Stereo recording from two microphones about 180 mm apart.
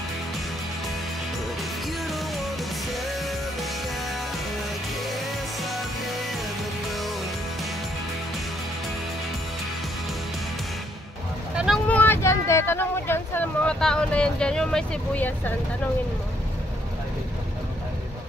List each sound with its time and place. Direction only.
2.0 s music: centre (ahead or behind)
5.6 s music: centre (ahead or behind)
11.5 s vehicle: centre (ahead or behind)